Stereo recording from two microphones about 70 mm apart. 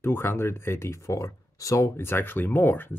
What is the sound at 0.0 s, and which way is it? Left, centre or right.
Speech, left.